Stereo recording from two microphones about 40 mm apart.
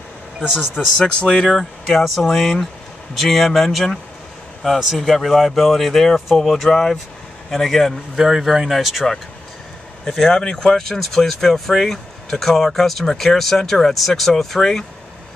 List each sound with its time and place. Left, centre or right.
0.4 s speech: centre
0.9 s speech: centre
8.3 s speech: centre
10.0 s speech: centre